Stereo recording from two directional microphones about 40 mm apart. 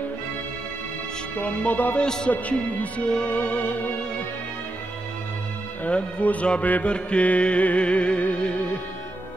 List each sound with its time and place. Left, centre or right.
1.3 s music: left
2.0 s a man's voice: centre
2.7 s music: left
5.9 s speech: left
6.6 s music: left
6.9 s music: left